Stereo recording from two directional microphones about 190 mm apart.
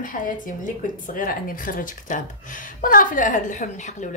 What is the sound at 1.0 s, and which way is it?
Speech, 45° left (ahead or behind).